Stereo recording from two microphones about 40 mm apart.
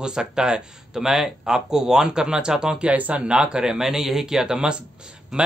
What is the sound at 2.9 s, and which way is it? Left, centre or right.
Speech, right.